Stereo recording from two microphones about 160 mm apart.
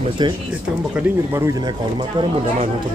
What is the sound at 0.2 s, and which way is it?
Speech, 30° right (ahead or behind).